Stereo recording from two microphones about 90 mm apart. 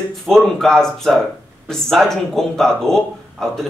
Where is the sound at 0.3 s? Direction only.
5° left (ahead or behind).